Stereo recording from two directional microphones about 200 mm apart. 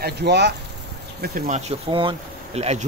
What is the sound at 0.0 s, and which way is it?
A man's voice, 55° right (ahead or behind).